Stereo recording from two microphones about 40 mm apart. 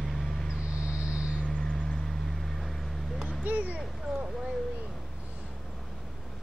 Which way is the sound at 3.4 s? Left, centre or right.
Right.